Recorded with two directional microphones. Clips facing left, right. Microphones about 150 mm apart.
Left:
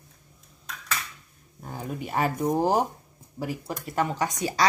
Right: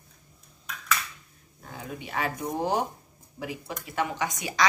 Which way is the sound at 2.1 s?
40° left (ahead or behind).